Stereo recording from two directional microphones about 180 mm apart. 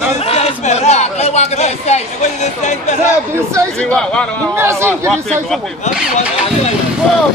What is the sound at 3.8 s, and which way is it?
Speech, 5° left (ahead or behind).